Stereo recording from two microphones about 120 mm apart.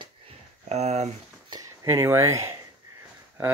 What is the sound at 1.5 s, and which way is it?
Speech, 25° right (ahead or behind).